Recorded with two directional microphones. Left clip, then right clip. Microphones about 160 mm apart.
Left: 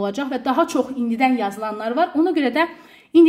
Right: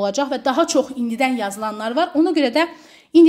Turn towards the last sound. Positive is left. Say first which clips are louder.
# right 1 dB
turn(degrees=-30)  # may be behind; listen again after turning